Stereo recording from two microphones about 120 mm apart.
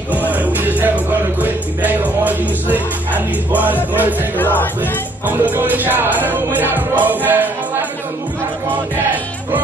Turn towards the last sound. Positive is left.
turn(degrees=-15)  # may be behind; listen again after turning